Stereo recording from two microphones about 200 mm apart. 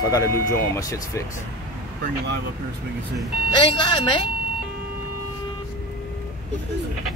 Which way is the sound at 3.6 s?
25° left (ahead or behind).